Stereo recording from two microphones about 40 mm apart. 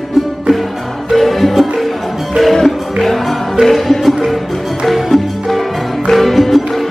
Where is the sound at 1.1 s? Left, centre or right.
Centre.